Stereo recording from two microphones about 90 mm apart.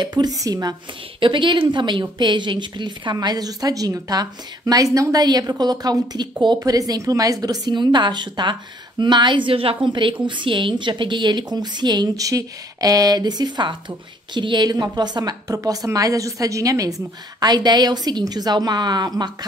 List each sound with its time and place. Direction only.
0.0 s a woman's voice: 50° right (ahead or behind)
1.2 s a woman's voice: 65° right (ahead or behind); by 9.8 s 90° right
9.9 s a woman's voice: 65° right (ahead or behind)
12.2 s a woman's voice: 40° right (ahead or behind)
15.5 s a woman's voice: 40° right (ahead or behind)